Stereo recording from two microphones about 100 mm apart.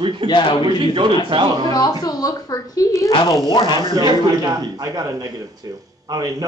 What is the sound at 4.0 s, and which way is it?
A man's voice, 40° right (ahead or behind).